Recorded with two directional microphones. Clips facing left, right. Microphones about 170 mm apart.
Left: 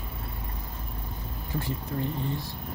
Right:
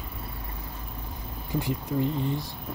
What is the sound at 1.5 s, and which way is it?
Speech, 15° right (ahead or behind).